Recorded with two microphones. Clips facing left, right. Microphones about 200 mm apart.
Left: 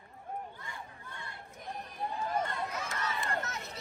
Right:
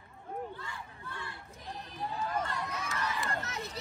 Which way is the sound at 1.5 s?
50° left (ahead or behind).